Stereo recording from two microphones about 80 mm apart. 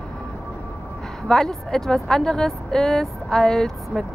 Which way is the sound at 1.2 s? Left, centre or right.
Centre.